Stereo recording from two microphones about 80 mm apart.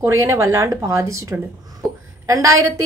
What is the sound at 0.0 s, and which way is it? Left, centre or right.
Speech, right.